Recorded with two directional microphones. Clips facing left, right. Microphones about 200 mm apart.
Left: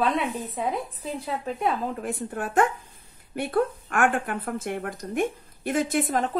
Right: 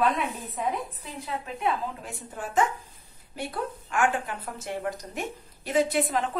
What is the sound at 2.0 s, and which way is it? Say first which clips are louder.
A woman's voice: left 7 dB; 60° left (ahead or behind).